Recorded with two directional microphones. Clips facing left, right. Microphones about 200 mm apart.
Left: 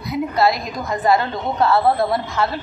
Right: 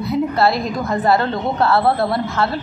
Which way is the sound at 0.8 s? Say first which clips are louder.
Even; 15° left (ahead or behind).